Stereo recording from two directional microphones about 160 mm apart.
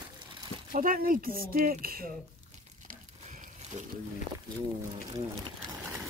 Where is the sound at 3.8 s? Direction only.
45° right (ahead or behind).